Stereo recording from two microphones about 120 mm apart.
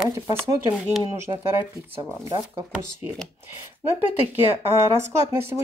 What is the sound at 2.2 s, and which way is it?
Speech, 30° right (ahead or behind).